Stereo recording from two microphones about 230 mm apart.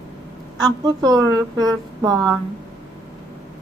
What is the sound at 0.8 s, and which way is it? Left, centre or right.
Speech, centre.